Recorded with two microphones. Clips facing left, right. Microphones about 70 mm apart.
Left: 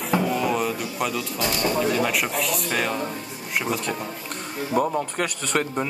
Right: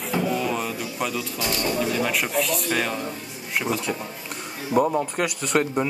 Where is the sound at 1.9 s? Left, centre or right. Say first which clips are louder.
Even; centre.